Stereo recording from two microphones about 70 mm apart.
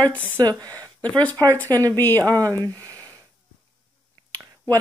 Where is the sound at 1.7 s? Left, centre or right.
Right.